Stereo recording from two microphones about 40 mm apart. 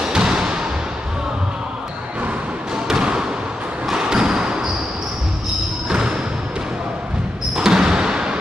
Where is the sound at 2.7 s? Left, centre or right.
Centre.